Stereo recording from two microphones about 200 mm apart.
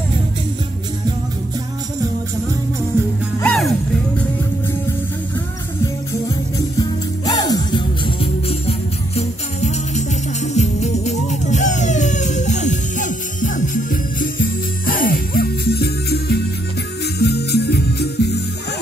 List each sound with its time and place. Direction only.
3.4 s music: 5° left (ahead or behind)
6.8 s music: 20° left (ahead or behind); by 18.3 s 55° left (ahead or behind)